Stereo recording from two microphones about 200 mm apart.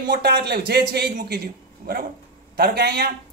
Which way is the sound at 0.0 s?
55° right (ahead or behind).